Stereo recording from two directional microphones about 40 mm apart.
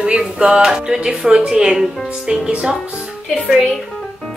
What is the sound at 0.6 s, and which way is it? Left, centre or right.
Music, centre.